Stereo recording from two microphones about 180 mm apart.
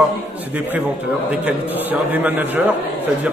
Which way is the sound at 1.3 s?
5° right (ahead or behind).